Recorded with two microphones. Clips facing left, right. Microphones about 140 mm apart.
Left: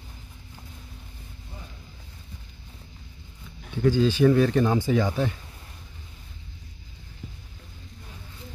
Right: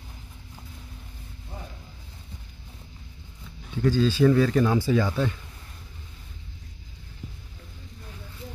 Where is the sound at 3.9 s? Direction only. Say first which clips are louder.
Left 1 dB; 15° left (ahead or behind).